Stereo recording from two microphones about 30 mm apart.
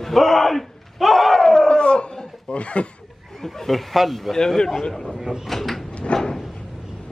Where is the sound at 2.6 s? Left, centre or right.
Left.